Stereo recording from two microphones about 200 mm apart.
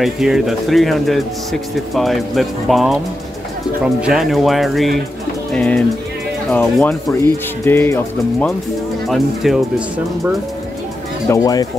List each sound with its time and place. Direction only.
0.0 s speech: centre (ahead or behind)
9.1 s speech: centre (ahead or behind)
11.2 s speech: 15° left (ahead or behind)